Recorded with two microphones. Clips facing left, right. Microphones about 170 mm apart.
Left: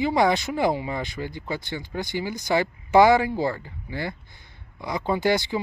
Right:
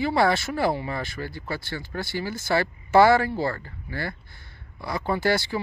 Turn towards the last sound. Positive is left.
turn(degrees=15)  # may be behind; listen again after turning